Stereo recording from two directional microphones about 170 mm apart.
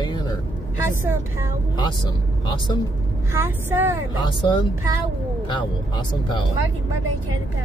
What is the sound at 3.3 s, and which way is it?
Speech, 15° right (ahead or behind).